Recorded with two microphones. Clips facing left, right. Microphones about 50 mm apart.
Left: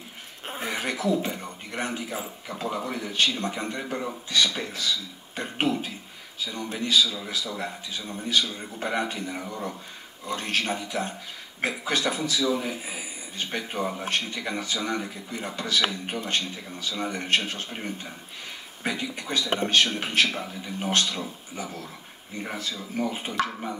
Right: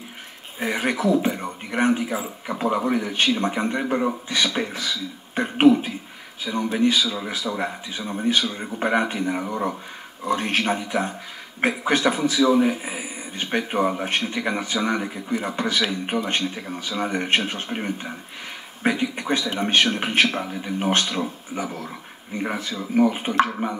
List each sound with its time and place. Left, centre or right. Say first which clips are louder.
0.6 s speech: right 6 dB; right